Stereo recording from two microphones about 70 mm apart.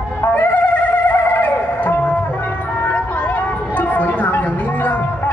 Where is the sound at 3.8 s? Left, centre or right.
Left.